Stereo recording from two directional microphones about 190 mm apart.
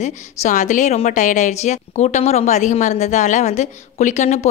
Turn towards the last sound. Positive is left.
turn(degrees=40)  # may be behind; listen again after turning